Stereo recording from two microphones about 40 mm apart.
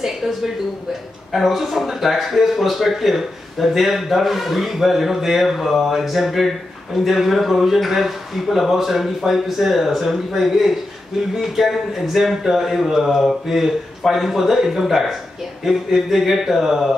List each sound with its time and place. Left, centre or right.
0.0 s speech: centre